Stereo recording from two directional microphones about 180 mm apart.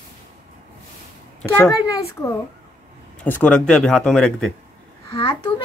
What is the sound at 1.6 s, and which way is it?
A woman's voice, 20° left (ahead or behind).